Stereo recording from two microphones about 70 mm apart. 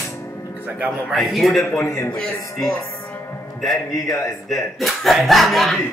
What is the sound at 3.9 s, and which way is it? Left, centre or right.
Speech, left.